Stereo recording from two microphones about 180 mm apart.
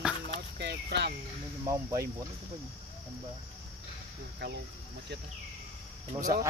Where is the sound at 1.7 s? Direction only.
20° right (ahead or behind).